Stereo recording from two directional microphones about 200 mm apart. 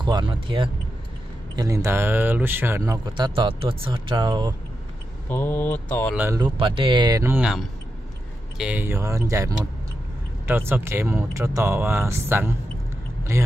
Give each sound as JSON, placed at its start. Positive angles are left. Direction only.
{"t": 0.0, "sound": "speech", "side_deg": -25}
{"t": 5.3, "sound": "speech", "side_deg": 10}
{"t": 6.1, "sound": "speech", "side_deg": -10}
{"t": 6.4, "sound": "speech", "side_deg": -25}